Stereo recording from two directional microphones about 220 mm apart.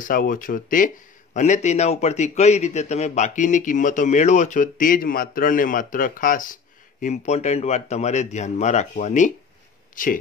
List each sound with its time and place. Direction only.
0.0 s a man's voice: 40° left (ahead or behind)